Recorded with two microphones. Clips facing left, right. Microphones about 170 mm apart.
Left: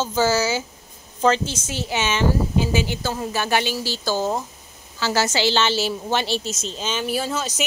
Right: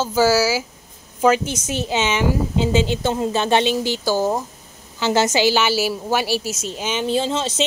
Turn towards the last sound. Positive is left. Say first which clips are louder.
# right 4 dB
turn(degrees=-25)  # may be behind; listen again after turning